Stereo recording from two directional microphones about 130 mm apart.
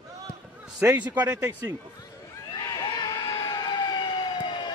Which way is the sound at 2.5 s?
25° left (ahead or behind).